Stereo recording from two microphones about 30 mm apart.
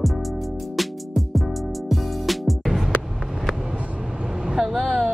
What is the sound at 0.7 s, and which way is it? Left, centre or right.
Music, centre.